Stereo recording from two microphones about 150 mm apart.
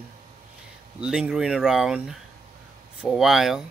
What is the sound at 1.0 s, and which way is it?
Speech, 5° right (ahead or behind).